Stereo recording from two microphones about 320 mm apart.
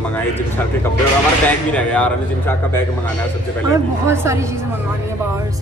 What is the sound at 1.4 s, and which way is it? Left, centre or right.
Speech, centre.